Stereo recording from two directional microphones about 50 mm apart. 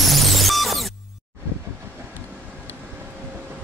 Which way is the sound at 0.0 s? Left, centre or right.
Centre.